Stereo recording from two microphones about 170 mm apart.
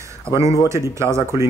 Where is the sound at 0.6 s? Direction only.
15° right (ahead or behind).